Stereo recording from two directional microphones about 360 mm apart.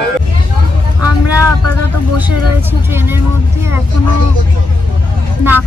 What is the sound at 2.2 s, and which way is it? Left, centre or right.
Speech, centre.